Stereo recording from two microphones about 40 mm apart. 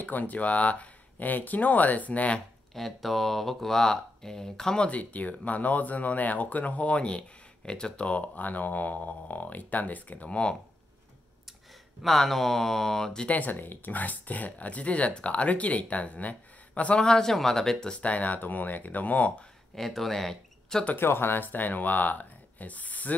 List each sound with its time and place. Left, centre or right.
0.0 s speech: left
2.7 s speech: centre
4.8 s speech: left
7.1 s speech: left
8.4 s speech: left
12.0 s speech: centre
13.3 s speech: left
17.0 s speech: centre
18.0 s speech: left
19.7 s speech: centre
20.9 s speech: left